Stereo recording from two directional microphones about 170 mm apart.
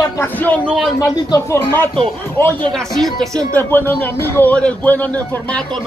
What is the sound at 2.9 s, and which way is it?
Speech, centre (ahead or behind).